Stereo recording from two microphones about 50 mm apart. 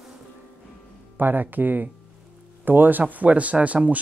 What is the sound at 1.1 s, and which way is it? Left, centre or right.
Speech, right.